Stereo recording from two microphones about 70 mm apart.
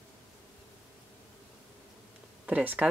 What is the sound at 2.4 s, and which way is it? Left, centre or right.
Speech, right.